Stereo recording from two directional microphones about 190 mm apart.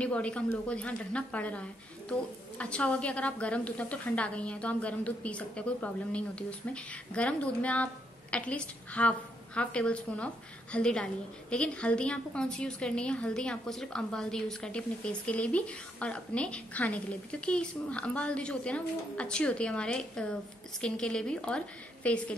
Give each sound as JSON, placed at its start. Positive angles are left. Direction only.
{"t": 0.0, "sound": "a woman's voice", "side_deg": 5}